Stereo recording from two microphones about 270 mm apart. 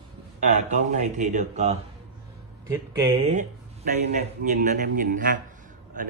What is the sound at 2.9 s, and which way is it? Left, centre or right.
A man's voice, right.